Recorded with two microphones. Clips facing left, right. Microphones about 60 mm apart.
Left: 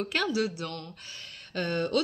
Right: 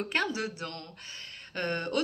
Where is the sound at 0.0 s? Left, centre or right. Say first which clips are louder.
Left 2 dB; right.